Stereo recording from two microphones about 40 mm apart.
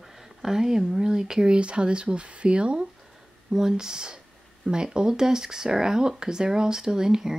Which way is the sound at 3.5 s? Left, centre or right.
Centre.